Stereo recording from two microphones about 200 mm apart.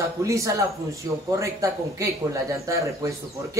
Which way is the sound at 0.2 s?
15° right (ahead or behind).